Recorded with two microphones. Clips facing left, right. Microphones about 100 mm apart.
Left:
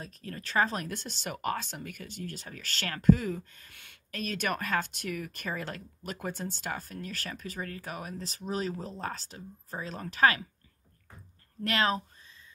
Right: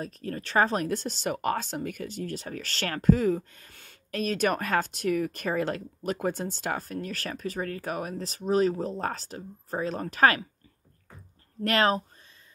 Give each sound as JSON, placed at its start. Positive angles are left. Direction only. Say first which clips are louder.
{"t": 0.0, "sound": "speech", "louder": "right 7 dB", "side_deg": -35}
{"t": 11.6, "sound": "speech", "louder": "right 5 dB", "side_deg": -45}